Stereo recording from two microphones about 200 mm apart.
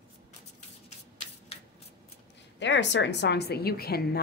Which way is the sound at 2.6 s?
60° left (ahead or behind).